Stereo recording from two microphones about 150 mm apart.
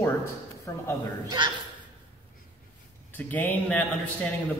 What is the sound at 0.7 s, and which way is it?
Speech, 20° left (ahead or behind).